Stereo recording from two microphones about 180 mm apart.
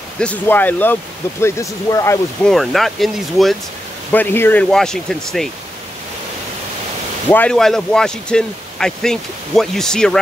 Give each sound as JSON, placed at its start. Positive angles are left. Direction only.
{"t": 0.2, "sound": "speech", "side_deg": 10}
{"t": 2.4, "sound": "speech", "side_deg": 0}
{"t": 7.2, "sound": "speech", "side_deg": 10}